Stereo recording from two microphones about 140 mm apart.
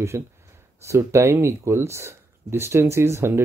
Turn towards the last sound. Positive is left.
turn(degrees=-20)  # may be behind; listen again after turning